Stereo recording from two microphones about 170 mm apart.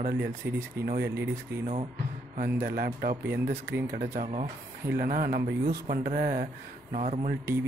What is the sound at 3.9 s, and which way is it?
Speech, 55° right (ahead or behind).